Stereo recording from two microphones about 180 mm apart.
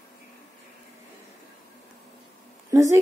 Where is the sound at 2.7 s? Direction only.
15° right (ahead or behind).